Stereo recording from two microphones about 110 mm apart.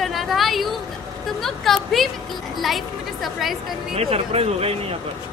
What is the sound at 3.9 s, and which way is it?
Speech, 65° right (ahead or behind).